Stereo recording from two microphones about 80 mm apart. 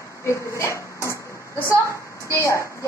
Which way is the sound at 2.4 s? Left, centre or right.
Left.